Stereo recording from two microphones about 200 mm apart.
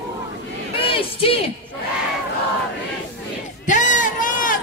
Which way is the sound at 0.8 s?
25° left (ahead or behind).